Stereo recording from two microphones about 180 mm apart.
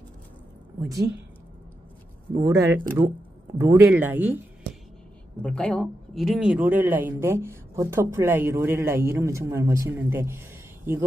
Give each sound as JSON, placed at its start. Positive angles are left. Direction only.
{"t": 0.8, "sound": "speech", "side_deg": -20}
{"t": 2.4, "sound": "speech", "side_deg": -15}
{"t": 5.4, "sound": "a man's voice", "side_deg": 5}